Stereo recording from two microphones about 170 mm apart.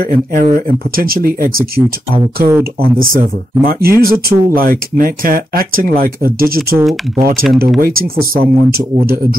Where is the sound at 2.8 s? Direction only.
60° right (ahead or behind).